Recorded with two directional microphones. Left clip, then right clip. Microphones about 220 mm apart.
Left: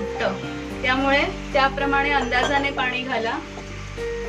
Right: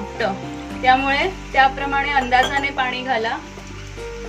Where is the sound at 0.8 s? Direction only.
40° right (ahead or behind).